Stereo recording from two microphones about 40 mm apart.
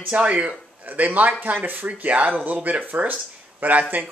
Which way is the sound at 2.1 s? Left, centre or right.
Right.